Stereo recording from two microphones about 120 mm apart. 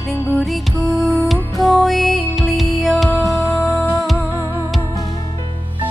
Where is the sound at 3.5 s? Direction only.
25° left (ahead or behind).